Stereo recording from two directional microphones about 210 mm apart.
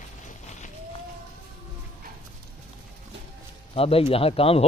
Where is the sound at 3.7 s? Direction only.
25° left (ahead or behind).